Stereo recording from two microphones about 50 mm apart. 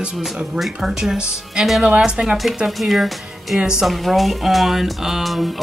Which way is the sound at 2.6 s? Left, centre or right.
Centre.